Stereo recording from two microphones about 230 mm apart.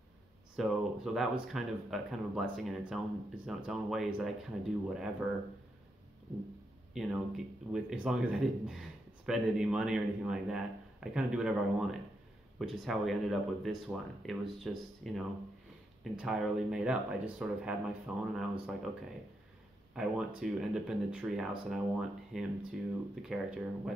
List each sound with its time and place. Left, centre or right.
0.6 s speech: centre
6.9 s speech: centre
19.9 s speech: centre